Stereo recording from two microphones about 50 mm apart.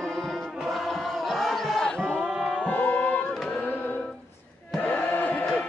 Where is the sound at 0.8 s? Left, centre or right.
Centre.